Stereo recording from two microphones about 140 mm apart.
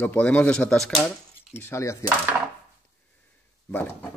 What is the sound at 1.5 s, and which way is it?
Speech, 20° left (ahead or behind).